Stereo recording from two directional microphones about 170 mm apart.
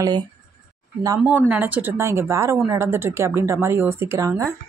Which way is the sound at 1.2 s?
10° right (ahead or behind).